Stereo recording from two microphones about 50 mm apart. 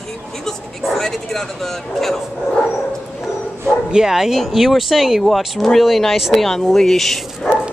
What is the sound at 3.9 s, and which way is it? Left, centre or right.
Speech, centre.